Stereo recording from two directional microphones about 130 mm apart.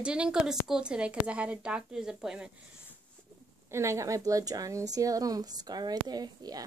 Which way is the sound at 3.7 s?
20° right (ahead or behind).